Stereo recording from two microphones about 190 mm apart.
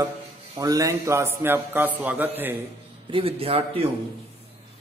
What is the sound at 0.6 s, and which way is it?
A man's voice, 20° right (ahead or behind).